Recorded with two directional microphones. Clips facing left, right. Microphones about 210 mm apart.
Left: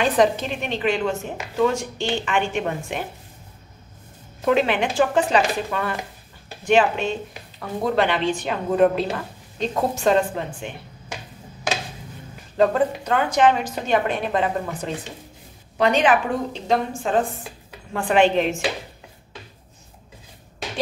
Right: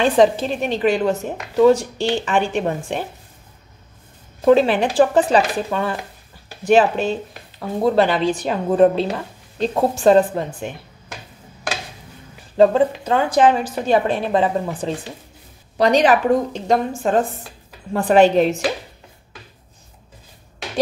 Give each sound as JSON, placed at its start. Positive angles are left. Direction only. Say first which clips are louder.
{"t": 0.0, "sound": "a woman's voice", "louder": "right 4 dB", "side_deg": -30}
{"t": 4.5, "sound": "a woman's voice", "louder": "right 6 dB", "side_deg": -35}
{"t": 12.5, "sound": "a woman's voice", "louder": "right 5 dB", "side_deg": -30}